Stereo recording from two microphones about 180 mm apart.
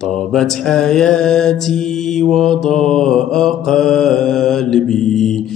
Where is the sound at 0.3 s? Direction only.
5° left (ahead or behind).